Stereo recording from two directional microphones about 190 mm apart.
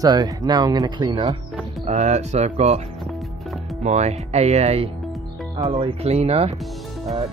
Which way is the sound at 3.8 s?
35° right (ahead or behind).